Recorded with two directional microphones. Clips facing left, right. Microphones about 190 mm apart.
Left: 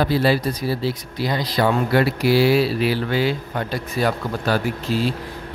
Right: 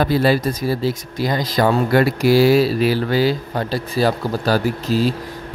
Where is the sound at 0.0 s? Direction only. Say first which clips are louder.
Right 2 dB; 50° right (ahead or behind).